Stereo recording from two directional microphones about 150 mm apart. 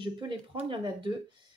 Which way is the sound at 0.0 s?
30° right (ahead or behind).